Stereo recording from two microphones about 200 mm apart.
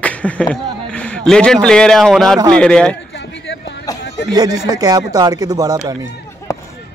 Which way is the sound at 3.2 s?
60° left (ahead or behind).